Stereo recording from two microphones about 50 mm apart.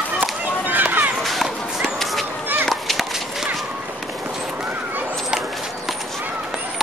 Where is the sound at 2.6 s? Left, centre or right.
Centre.